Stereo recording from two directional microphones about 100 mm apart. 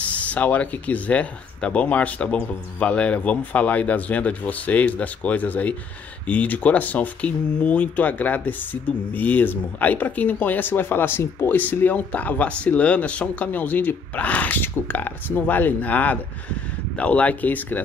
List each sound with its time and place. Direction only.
0.0 s speech: 15° left (ahead or behind)